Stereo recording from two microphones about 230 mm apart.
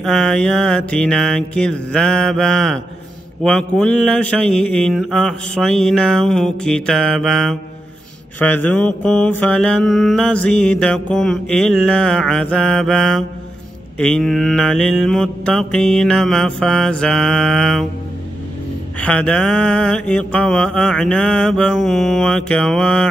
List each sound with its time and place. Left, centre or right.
0.0 s mantra: centre
8.5 s mantra: centre
18.9 s mantra: centre